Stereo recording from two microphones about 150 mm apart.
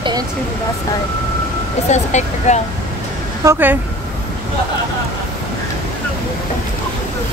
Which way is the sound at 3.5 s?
15° right (ahead or behind).